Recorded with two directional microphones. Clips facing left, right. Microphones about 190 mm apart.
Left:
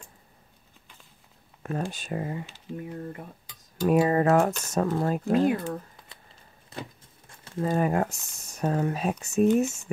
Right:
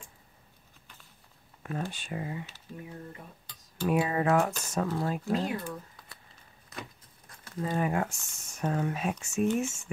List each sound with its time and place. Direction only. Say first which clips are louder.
1.6 s speech: left 4 dB; 45° left (ahead or behind)
3.8 s speech: left 6 dB; 40° left (ahead or behind)
6.7 s a sound: left 5 dB; 25° left (ahead or behind)
7.6 s speech: left 5 dB; 45° left (ahead or behind)